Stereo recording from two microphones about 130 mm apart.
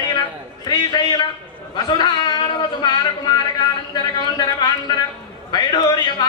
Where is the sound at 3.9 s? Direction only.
35° left (ahead or behind).